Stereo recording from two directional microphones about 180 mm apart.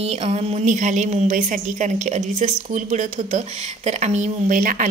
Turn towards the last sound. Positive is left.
turn(degrees=-45)  # may be behind; listen again after turning